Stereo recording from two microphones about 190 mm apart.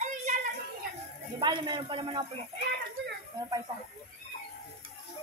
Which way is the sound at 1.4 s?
25° right (ahead or behind).